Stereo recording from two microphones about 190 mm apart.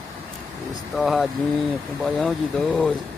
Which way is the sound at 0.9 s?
Centre (ahead or behind).